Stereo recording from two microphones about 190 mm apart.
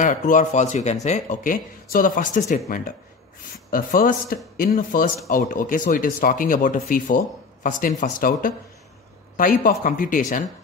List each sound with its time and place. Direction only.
0.0 s speech: 40° left (ahead or behind)